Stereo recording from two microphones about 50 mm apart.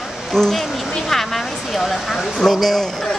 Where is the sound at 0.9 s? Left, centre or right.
Centre.